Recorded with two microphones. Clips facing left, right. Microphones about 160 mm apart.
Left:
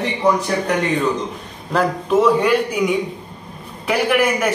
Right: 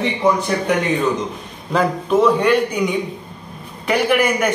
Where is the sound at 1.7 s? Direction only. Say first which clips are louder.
Even; centre (ahead or behind).